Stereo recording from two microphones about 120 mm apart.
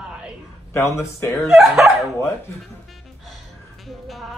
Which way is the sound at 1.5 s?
5° right (ahead or behind).